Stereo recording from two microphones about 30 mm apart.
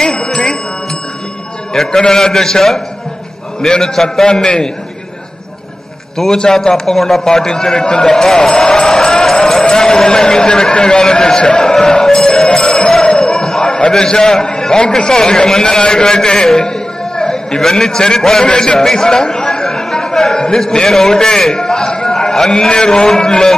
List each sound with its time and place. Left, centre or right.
0.0 s jingle bell: left
1.9 s a man's voice: left
3.8 s a man's voice: centre
4.3 s a man's voice: left
6.5 s a man's voice: centre
11.8 s music: left
13.0 s a sound: left
13.8 s a man's voice: left
16.0 s a sound: left
17.6 s a man's voice: centre
18.4 s a sound: left
20.4 s a man's voice: centre
22.7 s a man's voice: left